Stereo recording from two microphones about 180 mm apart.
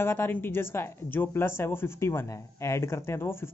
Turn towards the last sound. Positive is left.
turn(degrees=15)  # may be behind; listen again after turning